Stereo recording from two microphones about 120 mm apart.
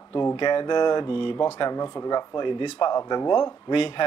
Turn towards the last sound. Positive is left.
turn(degrees=45)  # may be behind; listen again after turning